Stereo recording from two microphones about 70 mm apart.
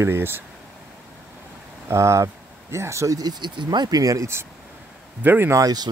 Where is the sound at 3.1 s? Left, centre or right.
Right.